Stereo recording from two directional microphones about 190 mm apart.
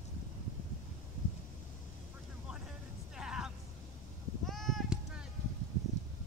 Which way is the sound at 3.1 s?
5° right (ahead or behind).